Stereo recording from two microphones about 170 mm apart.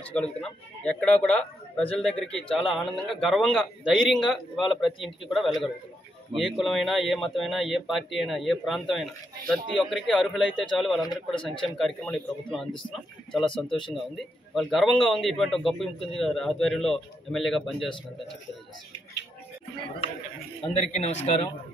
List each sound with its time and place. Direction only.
0.1 s a man's voice: 5° left (ahead or behind)
11.3 s speech: 30° left (ahead or behind)
11.8 s a man's voice: 5° left (ahead or behind)
20.7 s a man's voice: 40° left (ahead or behind)